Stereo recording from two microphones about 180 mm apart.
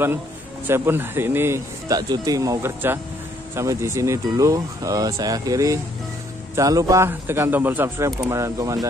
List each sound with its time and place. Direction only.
0.7 s speech: 15° right (ahead or behind)